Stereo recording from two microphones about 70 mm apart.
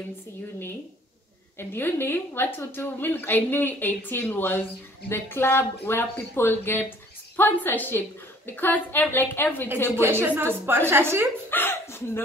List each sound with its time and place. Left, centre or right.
1.6 s a woman's voice: left
9.8 s a woman's voice: right
11.5 s speech: left